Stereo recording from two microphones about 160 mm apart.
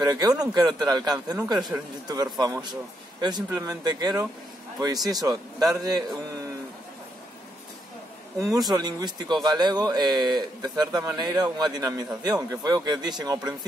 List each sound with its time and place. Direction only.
0.0 s a man's voice: 25° right (ahead or behind)
8.5 s a man's voice: 25° right (ahead or behind)